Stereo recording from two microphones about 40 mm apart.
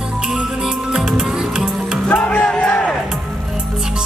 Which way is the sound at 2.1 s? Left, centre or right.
Left.